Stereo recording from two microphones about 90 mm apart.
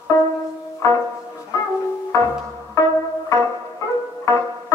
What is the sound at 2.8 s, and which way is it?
Music, 35° left (ahead or behind).